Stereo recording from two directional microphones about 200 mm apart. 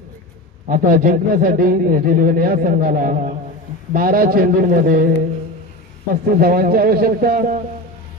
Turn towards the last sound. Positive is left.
turn(degrees=-45)  # may be behind; listen again after turning